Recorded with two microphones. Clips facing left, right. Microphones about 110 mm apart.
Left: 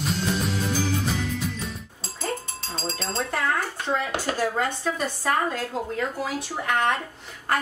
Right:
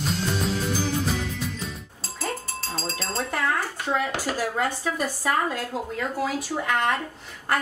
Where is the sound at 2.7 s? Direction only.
5° right (ahead or behind).